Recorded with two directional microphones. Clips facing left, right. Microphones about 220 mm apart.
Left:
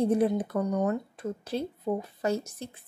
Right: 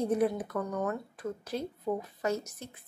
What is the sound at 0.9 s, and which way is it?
A woman's voice, 30° left (ahead or behind).